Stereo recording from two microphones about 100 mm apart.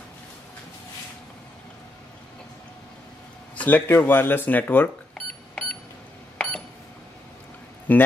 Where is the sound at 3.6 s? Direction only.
15° left (ahead or behind).